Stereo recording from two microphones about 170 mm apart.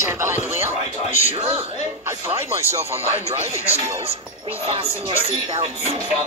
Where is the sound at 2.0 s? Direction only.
15° right (ahead or behind).